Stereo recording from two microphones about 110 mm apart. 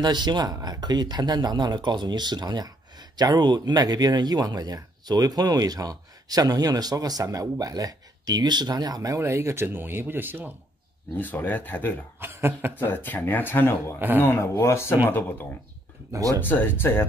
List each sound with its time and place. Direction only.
0.0 s speech: 40° right (ahead or behind); by 10.5 s 20° right (ahead or behind)
11.1 s speech: 15° left (ahead or behind)
12.2 s speech: 20° right (ahead or behind)
12.7 s speech: 20° left (ahead or behind)
13.9 s speech: 20° right (ahead or behind)
14.2 s speech: 25° left (ahead or behind)
16.1 s speech: 30° right (ahead or behind)
16.3 s speech: 20° left (ahead or behind)